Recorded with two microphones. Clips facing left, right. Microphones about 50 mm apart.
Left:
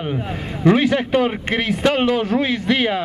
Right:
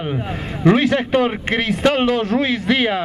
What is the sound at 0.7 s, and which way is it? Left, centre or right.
Speech, centre.